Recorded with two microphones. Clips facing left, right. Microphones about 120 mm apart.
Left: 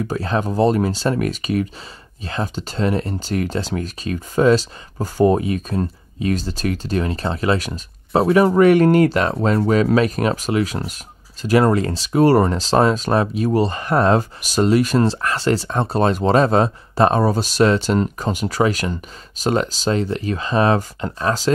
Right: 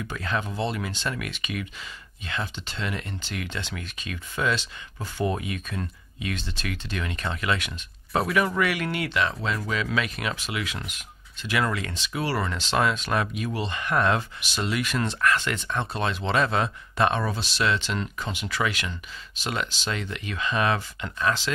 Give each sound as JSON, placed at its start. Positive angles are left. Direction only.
{"t": 0.0, "sound": "speech", "side_deg": 35}